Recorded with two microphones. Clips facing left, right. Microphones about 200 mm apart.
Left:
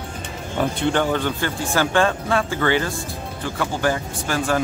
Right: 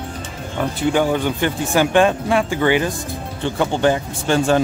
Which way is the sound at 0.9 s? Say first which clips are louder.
Right 3 dB; 10° right (ahead or behind).